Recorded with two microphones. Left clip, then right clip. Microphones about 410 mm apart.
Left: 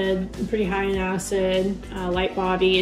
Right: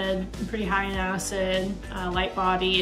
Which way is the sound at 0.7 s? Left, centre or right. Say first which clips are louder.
Right 3 dB; left.